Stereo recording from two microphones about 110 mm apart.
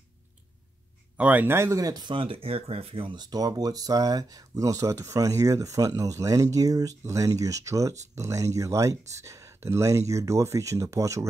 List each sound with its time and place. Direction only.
1.1 s speech: 15° right (ahead or behind); by 2.0 s 30° right (ahead or behind)
2.0 s speech: 55° right (ahead or behind); by 11.2 s 30° right (ahead or behind)